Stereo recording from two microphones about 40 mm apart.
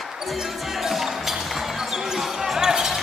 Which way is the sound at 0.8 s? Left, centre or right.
Centre.